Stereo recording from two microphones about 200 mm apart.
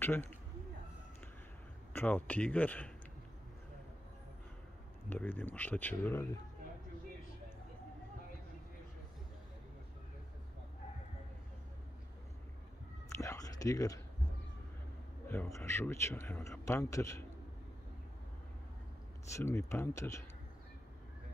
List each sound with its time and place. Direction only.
0.0 s speech: 10° left (ahead or behind)
2.0 s a man's voice: 10° left (ahead or behind)
5.1 s a man's voice: 10° left (ahead or behind)
13.1 s a sound: 15° left (ahead or behind)
15.2 s a man's voice: 10° left (ahead or behind)
19.3 s a man's voice: 15° left (ahead or behind)